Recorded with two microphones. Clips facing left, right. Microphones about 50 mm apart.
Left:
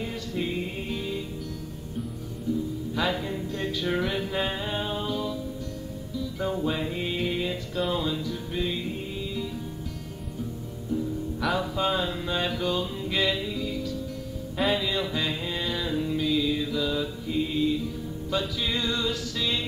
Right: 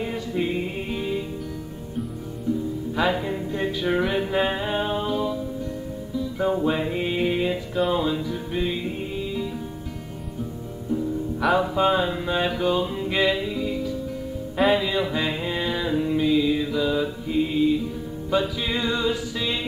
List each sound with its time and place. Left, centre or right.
0.0 s music: centre
3.0 s music: centre
11.5 s music: right